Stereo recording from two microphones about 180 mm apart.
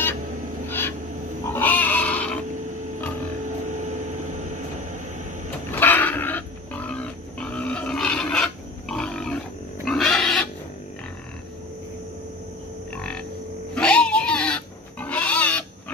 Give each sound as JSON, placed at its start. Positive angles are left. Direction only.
{"t": 0.7, "sound": "a sound", "side_deg": 10}
{"t": 1.5, "sound": "pig", "side_deg": 10}
{"t": 3.6, "sound": "train", "side_deg": -40}
{"t": 5.8, "sound": "pig", "side_deg": 10}
{"t": 9.8, "sound": "a sound", "side_deg": 0}
{"t": 12.9, "sound": "frog", "side_deg": 5}
{"t": 13.7, "sound": "goat", "side_deg": 5}